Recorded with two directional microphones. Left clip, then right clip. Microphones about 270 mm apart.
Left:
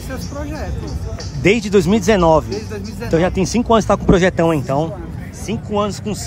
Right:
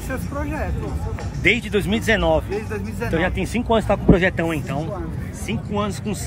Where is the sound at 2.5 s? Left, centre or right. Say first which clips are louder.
Left 1 dB; centre.